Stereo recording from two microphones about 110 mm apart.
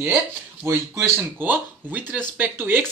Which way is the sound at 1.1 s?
15° right (ahead or behind).